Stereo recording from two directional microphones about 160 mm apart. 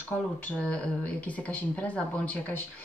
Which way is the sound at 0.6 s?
10° left (ahead or behind).